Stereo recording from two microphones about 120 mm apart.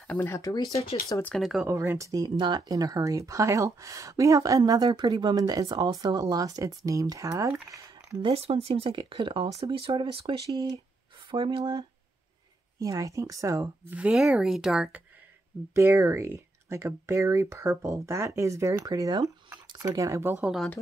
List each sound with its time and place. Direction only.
0.0 s speech: 15° left (ahead or behind)
0.4 s speech: 30° left (ahead or behind)
1.4 s speech: centre (ahead or behind)
1.7 s speech: 20° right (ahead or behind)
8.2 s speech: 50° right (ahead or behind); by 10.8 s 35° right (ahead or behind)
11.2 s speech: 45° right (ahead or behind)
12.7 s speech: 30° right (ahead or behind)
13.9 s speech: 5° right (ahead or behind)
15.7 s speech: 20° right (ahead or behind)
20.4 s speech: centre (ahead or behind)